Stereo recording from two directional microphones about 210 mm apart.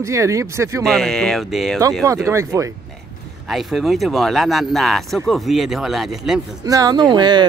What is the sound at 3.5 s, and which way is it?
Speech, centre (ahead or behind).